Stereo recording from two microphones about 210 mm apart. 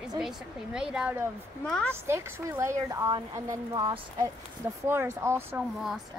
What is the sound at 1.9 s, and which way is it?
A woman's voice, 10° right (ahead or behind).